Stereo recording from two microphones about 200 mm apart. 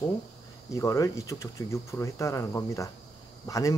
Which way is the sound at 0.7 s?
15° left (ahead or behind).